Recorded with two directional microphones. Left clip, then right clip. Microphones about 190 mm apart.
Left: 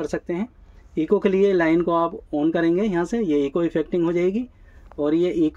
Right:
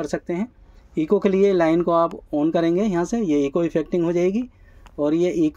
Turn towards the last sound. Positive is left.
turn(degrees=-10)  # may be behind; listen again after turning